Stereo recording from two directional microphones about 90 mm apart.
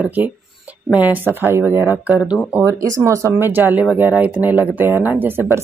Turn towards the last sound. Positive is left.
turn(degrees=-20)  # may be behind; listen again after turning